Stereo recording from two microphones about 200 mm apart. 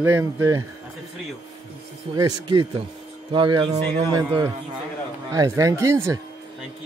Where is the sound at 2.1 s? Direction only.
20° right (ahead or behind).